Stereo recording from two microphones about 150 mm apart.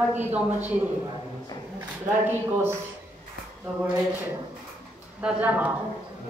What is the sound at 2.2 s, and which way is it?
Speech, 15° right (ahead or behind).